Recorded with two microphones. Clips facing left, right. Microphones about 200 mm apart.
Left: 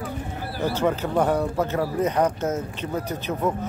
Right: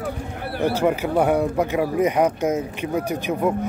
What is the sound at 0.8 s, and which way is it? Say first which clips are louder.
Speech: right 1 dB; 10° right (ahead or behind).